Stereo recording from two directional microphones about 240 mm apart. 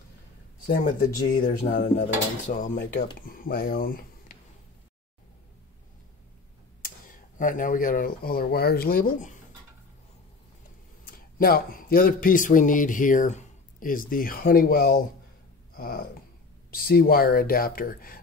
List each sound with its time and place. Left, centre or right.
0.7 s speech: left
6.8 s speech: left
11.1 s speech: left
15.7 s a sound: left
16.7 s speech: left